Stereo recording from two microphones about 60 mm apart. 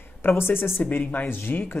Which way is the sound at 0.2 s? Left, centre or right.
Left.